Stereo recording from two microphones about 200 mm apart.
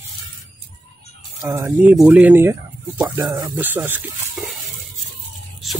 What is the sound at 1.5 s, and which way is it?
Speech, 10° right (ahead or behind).